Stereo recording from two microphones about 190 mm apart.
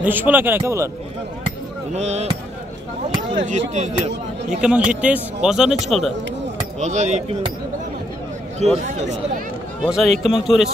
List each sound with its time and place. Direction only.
0.0 s speech: 10° right (ahead or behind)
2.0 s speech: 35° right (ahead or behind)
3.4 s speech: 40° right (ahead or behind)
4.6 s speech: 5° right (ahead or behind)
6.8 s speech: 40° right (ahead or behind)
8.5 s speech: 35° right (ahead or behind)
9.8 s speech: centre (ahead or behind)